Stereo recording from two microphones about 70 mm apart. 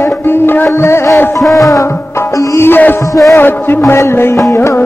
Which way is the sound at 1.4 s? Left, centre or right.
Centre.